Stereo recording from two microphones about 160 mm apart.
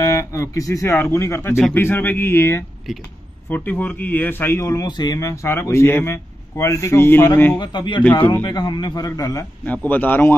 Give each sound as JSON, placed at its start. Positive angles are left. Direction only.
{"t": 0.0, "sound": "a man's voice", "side_deg": 20}
{"t": 7.5, "sound": "a man's voice", "side_deg": 30}
{"t": 8.0, "sound": "a man's voice", "side_deg": 10}
{"t": 8.5, "sound": "a man's voice", "side_deg": 25}